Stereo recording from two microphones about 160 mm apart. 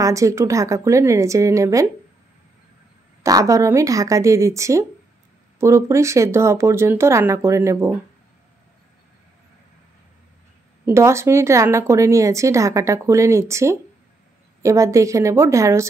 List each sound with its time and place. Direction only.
0.0 s speech: 20° right (ahead or behind)
3.3 s speech: 20° right (ahead or behind)
10.9 s speech: 15° right (ahead or behind)